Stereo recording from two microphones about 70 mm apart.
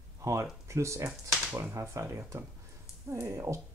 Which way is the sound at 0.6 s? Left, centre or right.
Right.